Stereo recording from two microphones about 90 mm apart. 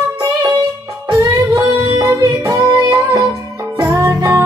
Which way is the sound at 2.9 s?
30° right (ahead or behind).